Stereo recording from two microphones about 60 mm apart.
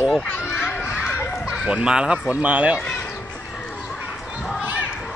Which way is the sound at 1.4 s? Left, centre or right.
Centre.